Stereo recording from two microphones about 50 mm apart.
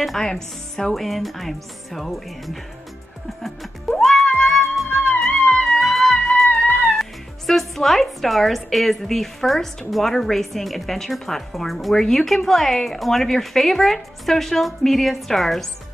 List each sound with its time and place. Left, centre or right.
0.0 s speech: centre
3.9 s music: centre
4.8 s music: left
5.3 s music: centre
5.7 s music: centre
7.0 s speech: centre